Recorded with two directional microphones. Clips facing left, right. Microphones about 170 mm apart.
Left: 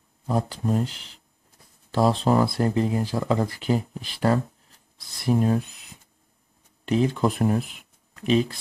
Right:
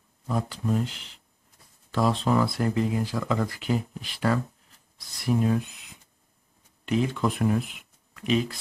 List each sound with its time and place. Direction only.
0.3 s speech: 35° left (ahead or behind)
6.9 s speech: 35° left (ahead or behind)